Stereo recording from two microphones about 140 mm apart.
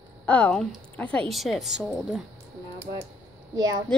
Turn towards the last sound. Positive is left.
turn(degrees=-30)  # may be behind; listen again after turning